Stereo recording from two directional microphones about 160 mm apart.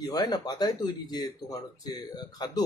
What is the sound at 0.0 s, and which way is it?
Speech, 25° left (ahead or behind).